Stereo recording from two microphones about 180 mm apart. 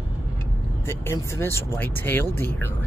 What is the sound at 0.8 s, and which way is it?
Speech, 15° left (ahead or behind).